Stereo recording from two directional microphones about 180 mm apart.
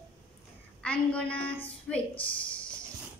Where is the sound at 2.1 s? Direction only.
30° left (ahead or behind).